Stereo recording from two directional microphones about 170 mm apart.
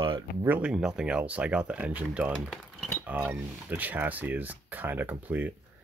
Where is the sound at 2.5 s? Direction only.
5° left (ahead or behind).